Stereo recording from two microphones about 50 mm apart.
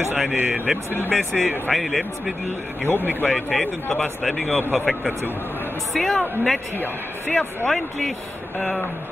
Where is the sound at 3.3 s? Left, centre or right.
Centre.